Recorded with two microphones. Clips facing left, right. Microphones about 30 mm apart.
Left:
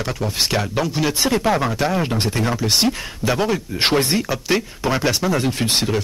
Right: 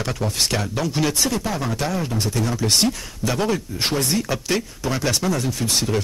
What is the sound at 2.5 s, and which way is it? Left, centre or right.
Speech, centre.